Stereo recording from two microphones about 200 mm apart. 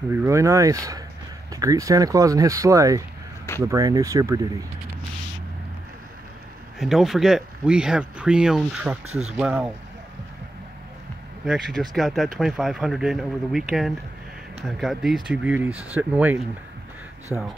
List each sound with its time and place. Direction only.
0.1 s speech: 15° right (ahead or behind)
6.8 s speech: centre (ahead or behind)
9.0 s speech: 30° right (ahead or behind)
9.4 s speech: 5° right (ahead or behind)
11.4 s speech: centre (ahead or behind)
17.3 s speech: 5° left (ahead or behind)